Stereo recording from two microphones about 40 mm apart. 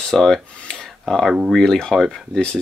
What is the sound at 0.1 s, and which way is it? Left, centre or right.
Speech, centre.